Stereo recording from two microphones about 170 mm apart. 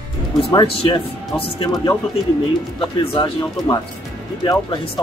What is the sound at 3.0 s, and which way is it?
Speech, 30° left (ahead or behind).